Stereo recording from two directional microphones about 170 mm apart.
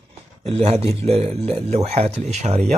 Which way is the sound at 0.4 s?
35° right (ahead or behind).